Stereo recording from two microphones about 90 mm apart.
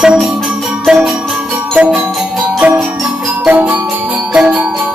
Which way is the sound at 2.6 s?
15° right (ahead or behind).